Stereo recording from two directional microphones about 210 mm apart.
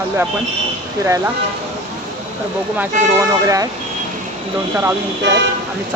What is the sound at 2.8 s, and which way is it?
Speech, 15° right (ahead or behind).